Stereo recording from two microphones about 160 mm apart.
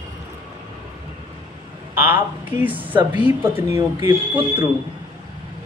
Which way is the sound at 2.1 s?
10° right (ahead or behind).